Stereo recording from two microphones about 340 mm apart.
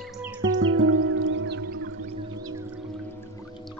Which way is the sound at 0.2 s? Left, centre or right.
Centre.